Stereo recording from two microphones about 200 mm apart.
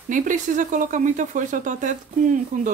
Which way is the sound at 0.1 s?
40° right (ahead or behind).